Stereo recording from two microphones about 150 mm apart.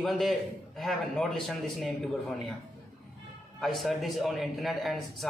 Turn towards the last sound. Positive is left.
turn(degrees=0)  # may be behind; listen again after turning